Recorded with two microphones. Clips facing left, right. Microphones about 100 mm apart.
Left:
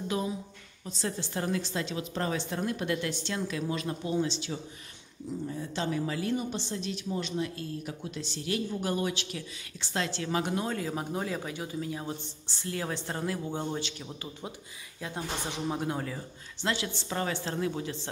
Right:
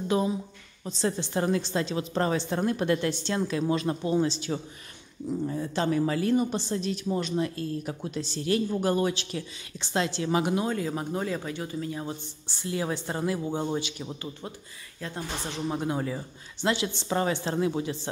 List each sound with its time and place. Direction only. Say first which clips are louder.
0.1 s a woman's voice: right 7 dB; 30° right (ahead or behind)
5.5 s a woman's voice: right 5 dB; 55° right (ahead or behind); by 9.4 s 35° right (ahead or behind)
9.8 s a woman's voice: right 5 dB; 20° right (ahead or behind)
15.0 s speech: right 1 dB; 15° left (ahead or behind)
15.7 s speech: right 3 dB; centre (ahead or behind)
16.6 s speech: right 5 dB; 20° right (ahead or behind)